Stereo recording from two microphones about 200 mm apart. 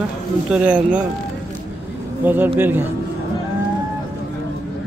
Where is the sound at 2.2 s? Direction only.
10° right (ahead or behind).